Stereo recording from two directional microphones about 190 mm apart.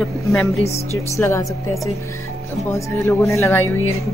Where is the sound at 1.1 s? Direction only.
15° left (ahead or behind).